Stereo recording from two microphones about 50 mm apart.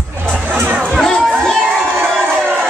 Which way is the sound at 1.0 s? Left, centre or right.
Centre.